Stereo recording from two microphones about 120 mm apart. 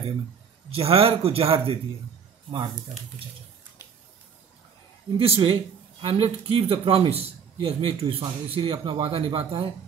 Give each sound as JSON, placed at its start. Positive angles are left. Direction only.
{"t": 0.7, "sound": "speech", "side_deg": -55}
{"t": 5.1, "sound": "speech", "side_deg": -50}